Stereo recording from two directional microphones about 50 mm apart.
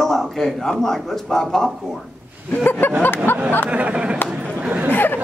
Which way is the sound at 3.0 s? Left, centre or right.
Left.